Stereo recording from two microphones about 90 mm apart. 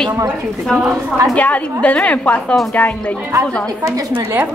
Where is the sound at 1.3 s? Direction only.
15° left (ahead or behind).